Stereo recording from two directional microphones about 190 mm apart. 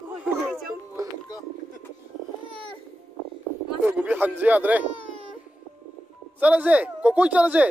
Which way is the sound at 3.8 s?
10° right (ahead or behind).